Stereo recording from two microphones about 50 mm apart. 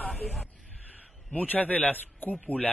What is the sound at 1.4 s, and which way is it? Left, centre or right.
Speech, left.